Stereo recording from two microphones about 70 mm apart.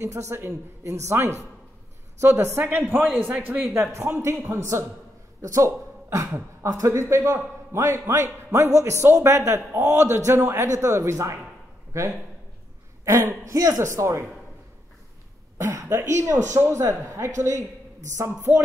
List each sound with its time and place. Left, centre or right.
0.0 s speech: right
3.0 s a man's voice: right
3.9 s a man's voice: right
13.0 s speech: right
15.5 s speech: right